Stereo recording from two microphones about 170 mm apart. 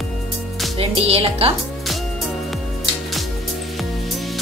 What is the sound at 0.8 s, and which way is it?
Speech, 35° right (ahead or behind).